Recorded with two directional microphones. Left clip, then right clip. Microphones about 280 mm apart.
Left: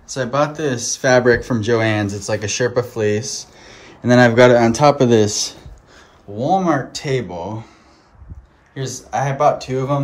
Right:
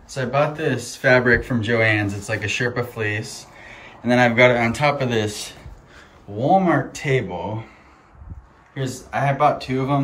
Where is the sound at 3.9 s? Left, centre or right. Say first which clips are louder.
Left 5 dB; left.